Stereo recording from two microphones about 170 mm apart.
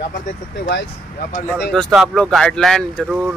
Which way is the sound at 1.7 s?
Centre (ahead or behind).